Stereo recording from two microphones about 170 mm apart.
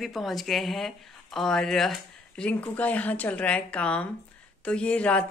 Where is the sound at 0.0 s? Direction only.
Centre (ahead or behind).